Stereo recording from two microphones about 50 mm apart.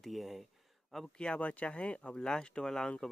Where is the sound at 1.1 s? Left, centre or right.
Centre.